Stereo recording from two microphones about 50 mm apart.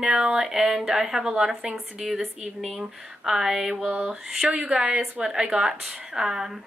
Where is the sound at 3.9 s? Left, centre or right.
Right.